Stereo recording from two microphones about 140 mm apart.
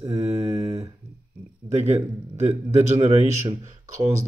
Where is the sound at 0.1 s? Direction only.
45° right (ahead or behind).